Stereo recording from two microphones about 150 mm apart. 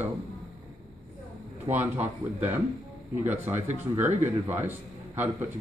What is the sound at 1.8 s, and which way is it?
A man's voice, 10° right (ahead or behind).